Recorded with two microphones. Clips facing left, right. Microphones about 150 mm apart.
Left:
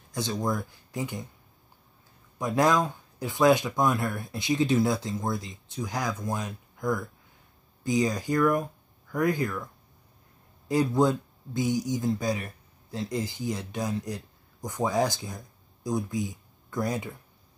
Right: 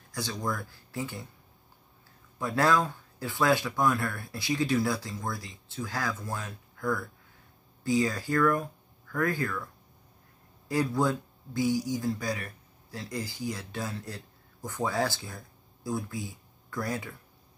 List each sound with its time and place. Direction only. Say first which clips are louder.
0.1 s speech: left 4 dB; 20° left (ahead or behind)
2.3 s speech: left 2 dB; 15° left (ahead or behind)
10.7 s speech: left 4 dB; 20° left (ahead or behind)